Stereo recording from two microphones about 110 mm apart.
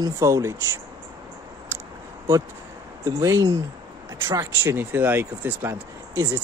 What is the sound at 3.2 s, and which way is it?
Speech, 30° right (ahead or behind).